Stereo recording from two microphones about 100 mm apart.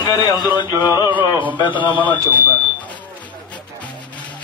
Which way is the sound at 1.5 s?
50° left (ahead or behind).